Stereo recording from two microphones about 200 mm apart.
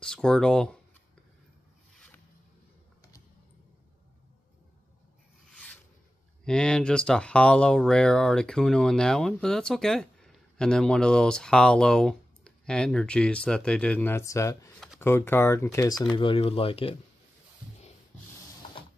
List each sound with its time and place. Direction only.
0.0 s speech: 5° left (ahead or behind)
5.5 s rub: 5° left (ahead or behind)
6.4 s speech: 5° left (ahead or behind); by 17.0 s 30° left (ahead or behind)